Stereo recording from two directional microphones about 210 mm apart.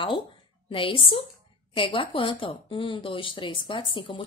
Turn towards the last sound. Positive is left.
turn(degrees=25)  # may be behind; listen again after turning